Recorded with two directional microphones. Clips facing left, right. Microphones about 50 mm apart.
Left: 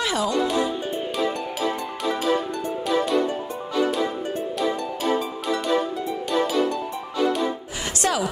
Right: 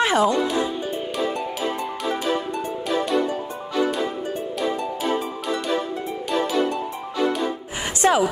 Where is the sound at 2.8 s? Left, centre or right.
Centre.